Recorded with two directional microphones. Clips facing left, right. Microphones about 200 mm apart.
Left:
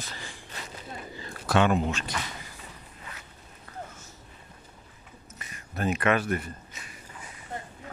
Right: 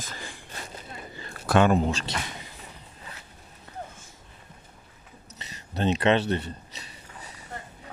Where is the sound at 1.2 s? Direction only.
55° right (ahead or behind).